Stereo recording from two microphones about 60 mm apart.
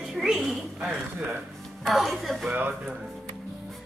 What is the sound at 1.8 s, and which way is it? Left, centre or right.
Speech, centre.